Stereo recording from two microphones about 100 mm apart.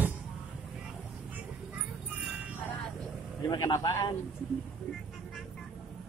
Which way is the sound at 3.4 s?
35° left (ahead or behind).